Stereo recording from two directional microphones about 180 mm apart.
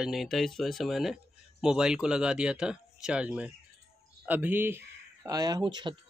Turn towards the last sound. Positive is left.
turn(degrees=-25)  # may be behind; listen again after turning